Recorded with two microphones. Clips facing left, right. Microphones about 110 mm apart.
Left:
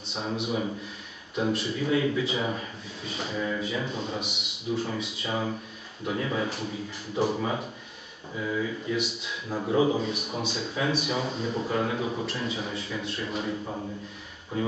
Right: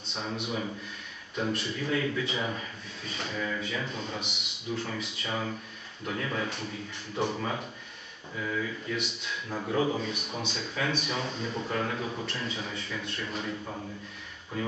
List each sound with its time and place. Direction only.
0.1 s a man's voice: 5° left (ahead or behind)
3.3 s speech: 15° left (ahead or behind)
3.6 s a man's voice: 5° left (ahead or behind)
8.9 s a man's voice: 5° left (ahead or behind)